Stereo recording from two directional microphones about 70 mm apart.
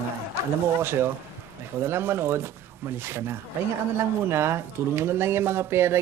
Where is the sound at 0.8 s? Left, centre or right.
Right.